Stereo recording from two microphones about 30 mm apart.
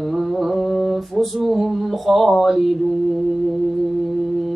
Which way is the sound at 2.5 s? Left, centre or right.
Centre.